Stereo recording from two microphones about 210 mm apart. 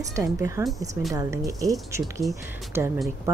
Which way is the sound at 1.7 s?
Centre (ahead or behind).